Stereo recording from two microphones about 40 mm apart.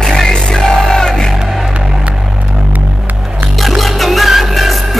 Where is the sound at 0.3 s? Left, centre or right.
Centre.